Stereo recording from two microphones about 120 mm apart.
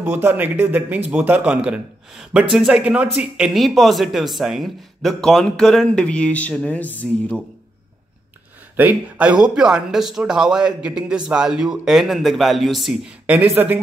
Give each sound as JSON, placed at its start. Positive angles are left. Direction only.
{"t": 0.0, "sound": "a man's voice", "side_deg": -15}
{"t": 8.7, "sound": "speech", "side_deg": -10}